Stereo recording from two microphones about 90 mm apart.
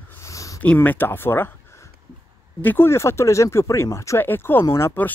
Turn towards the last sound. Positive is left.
turn(degrees=30)  # may be behind; listen again after turning